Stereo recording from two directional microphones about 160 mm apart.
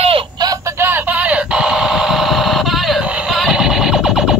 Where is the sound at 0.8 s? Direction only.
10° right (ahead or behind).